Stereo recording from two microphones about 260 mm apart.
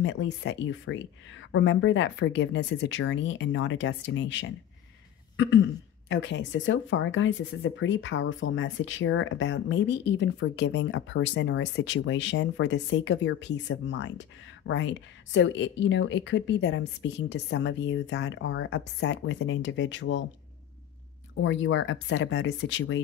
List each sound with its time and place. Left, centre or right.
0.0 s speech: left
6.0 s speech: left
21.4 s speech: left